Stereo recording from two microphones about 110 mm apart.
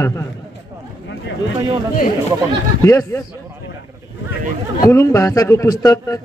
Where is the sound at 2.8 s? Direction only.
25° left (ahead or behind).